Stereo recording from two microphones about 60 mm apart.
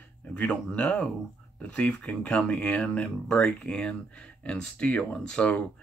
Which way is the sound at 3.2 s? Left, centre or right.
Centre.